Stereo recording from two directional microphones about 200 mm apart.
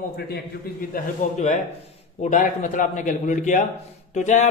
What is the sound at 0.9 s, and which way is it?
Speech, 40° left (ahead or behind).